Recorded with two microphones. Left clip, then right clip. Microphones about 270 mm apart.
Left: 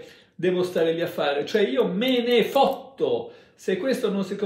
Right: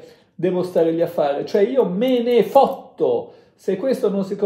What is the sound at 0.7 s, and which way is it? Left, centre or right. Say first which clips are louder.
Speech: right 6 dB; centre.